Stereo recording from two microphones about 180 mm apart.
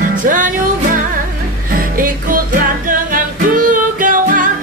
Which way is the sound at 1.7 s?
50° right (ahead or behind).